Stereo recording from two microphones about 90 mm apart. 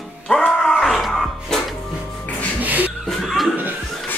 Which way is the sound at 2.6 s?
20° right (ahead or behind).